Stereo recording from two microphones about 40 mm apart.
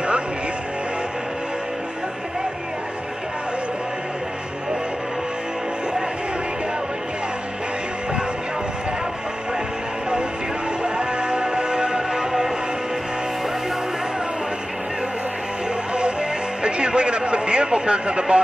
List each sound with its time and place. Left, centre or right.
10.8 s music: right
15.9 s music: right